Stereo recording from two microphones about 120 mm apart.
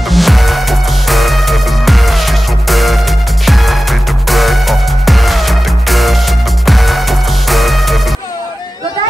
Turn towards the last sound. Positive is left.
turn(degrees=0)  # may be behind; listen again after turning